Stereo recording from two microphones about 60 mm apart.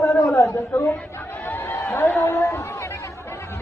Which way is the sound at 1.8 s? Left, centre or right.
Left.